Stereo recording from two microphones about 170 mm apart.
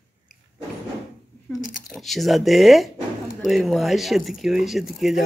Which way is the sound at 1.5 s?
10° left (ahead or behind).